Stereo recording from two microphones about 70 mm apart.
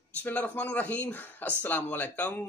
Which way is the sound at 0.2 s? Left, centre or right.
Left.